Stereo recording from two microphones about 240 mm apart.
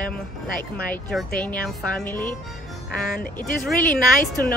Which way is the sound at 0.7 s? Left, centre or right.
Centre.